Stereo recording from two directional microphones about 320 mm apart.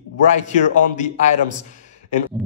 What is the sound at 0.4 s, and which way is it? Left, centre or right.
Speech, left.